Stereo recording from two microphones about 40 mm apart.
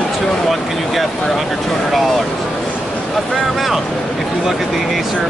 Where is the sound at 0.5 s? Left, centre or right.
Centre.